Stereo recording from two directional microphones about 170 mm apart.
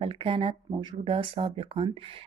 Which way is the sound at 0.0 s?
35° right (ahead or behind).